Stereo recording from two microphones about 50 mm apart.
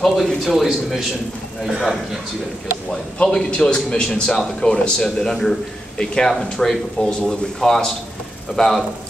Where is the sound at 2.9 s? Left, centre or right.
Centre.